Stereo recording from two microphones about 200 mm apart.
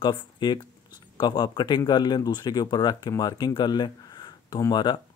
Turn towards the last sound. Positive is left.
turn(degrees=20)  # may be behind; listen again after turning